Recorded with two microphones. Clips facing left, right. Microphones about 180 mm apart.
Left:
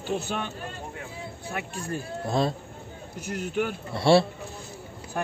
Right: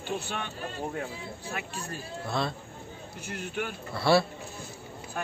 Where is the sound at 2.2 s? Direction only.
40° left (ahead or behind).